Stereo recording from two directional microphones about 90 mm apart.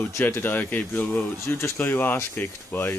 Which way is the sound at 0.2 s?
20° left (ahead or behind).